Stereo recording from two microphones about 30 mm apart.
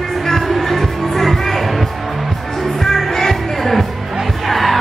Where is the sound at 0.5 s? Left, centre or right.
Centre.